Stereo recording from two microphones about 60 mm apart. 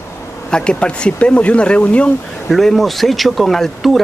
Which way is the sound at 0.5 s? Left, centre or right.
Centre.